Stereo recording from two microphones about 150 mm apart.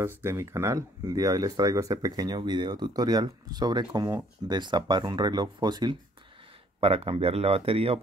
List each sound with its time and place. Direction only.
0.2 s speech: 20° right (ahead or behind)
6.8 s speech: 40° right (ahead or behind)